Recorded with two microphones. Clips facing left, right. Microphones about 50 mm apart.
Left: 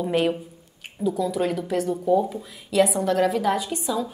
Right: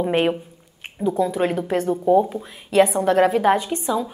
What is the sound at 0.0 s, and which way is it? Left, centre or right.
A woman's voice, right.